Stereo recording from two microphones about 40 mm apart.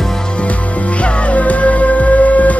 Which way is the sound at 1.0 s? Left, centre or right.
Left.